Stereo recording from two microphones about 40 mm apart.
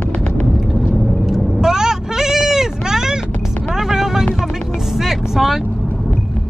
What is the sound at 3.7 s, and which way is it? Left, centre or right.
Vehicle, centre.